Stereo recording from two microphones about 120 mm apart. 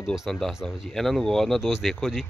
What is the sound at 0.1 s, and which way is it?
Speech, centre (ahead or behind).